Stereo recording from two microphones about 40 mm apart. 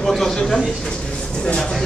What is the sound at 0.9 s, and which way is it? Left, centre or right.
Speech, left.